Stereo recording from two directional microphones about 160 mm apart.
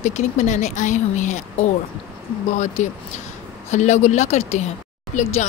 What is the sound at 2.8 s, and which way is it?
A woman's voice, 45° left (ahead or behind).